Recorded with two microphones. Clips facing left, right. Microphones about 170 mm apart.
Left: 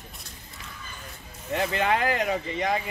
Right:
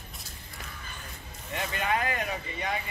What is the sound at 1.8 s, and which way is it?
Speech, 90° left.